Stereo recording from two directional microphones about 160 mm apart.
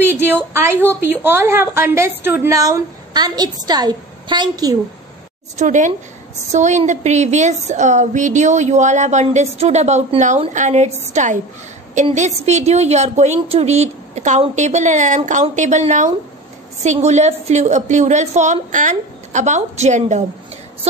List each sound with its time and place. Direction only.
0.1 s a woman's voice: 15° right (ahead or behind)
5.6 s speech: 50° right (ahead or behind)